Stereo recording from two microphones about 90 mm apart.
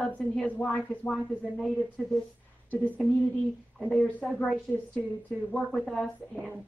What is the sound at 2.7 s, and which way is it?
Speech, 15° left (ahead or behind).